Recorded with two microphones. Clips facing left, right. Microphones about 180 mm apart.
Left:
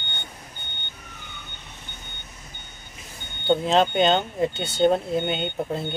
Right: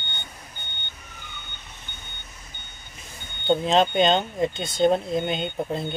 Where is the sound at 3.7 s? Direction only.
5° left (ahead or behind).